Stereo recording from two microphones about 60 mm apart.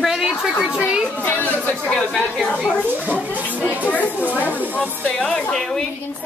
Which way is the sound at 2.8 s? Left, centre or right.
Right.